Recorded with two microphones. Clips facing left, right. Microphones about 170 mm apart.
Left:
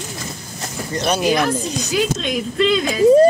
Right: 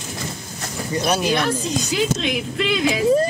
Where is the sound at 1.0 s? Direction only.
10° right (ahead or behind).